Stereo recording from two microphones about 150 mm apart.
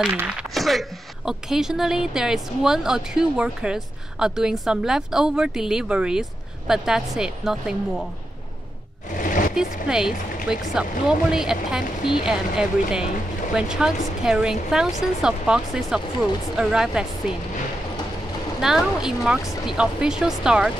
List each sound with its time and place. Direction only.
0.1 s speech: 10° right (ahead or behind)
0.6 s a woman's voice: centre (ahead or behind)
9.1 s a sound: 60° left (ahead or behind)
9.8 s a woman's voice: 5° right (ahead or behind)
18.6 s a woman's voice: 5° right (ahead or behind)